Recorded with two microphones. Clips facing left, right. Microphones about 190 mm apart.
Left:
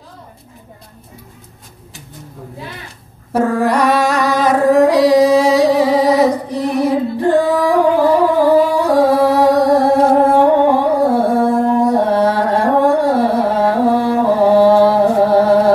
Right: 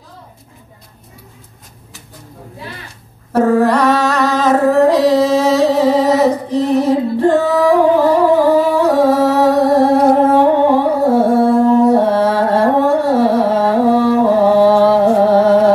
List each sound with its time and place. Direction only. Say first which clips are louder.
3.3 s humming: right 3 dB; 15° left (ahead or behind)
14.6 s music: even; 15° left (ahead or behind)